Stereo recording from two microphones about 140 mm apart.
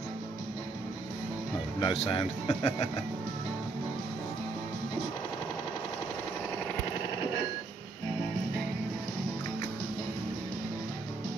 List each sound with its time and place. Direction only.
1.8 s speech: 35° left (ahead or behind)